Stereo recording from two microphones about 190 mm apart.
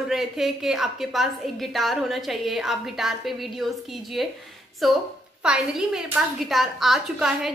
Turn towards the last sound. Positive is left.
turn(degrees=0)  # may be behind; listen again after turning